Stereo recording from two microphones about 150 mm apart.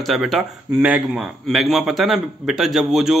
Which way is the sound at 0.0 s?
Centre (ahead or behind).